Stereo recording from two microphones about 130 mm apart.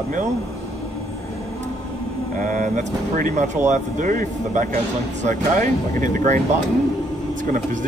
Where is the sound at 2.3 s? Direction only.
85° right.